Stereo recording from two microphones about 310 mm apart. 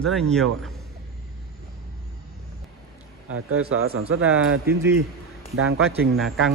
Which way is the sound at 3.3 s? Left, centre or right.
Right.